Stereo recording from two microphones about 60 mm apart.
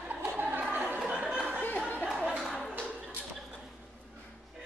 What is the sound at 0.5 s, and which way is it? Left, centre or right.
Chatter, right.